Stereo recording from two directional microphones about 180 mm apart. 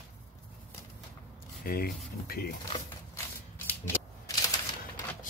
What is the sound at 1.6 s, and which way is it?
Speech, 60° left (ahead or behind).